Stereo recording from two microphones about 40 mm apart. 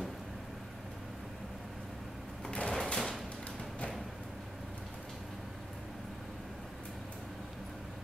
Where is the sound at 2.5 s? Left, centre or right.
Left.